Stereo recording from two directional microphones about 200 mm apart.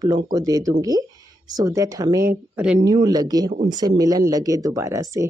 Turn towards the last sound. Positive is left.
turn(degrees=-15)  # may be behind; listen again after turning